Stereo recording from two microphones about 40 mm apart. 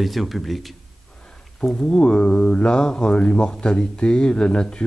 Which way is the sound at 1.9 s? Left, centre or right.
Left.